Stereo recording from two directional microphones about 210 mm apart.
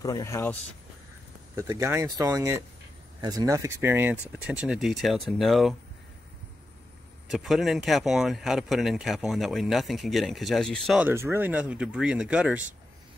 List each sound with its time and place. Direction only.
0.0 s speech: 15° left (ahead or behind)
1.5 s speech: 15° right (ahead or behind)
7.2 s speech: centre (ahead or behind)